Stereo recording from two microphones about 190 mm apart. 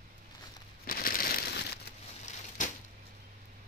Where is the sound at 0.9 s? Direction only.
50° left (ahead or behind).